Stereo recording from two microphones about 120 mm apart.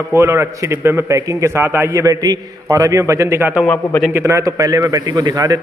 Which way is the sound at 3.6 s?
10° left (ahead or behind).